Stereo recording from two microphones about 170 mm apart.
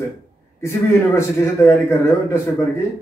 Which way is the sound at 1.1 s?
15° left (ahead or behind).